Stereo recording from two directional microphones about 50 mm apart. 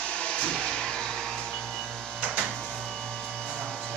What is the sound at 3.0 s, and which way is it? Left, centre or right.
Vacuum cleaner, centre.